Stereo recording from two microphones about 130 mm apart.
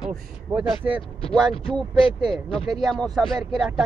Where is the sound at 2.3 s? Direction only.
Centre (ahead or behind).